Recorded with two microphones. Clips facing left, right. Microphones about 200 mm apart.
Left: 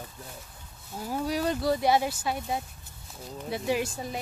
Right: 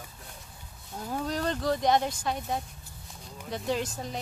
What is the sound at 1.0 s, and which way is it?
Speech, 10° left (ahead or behind).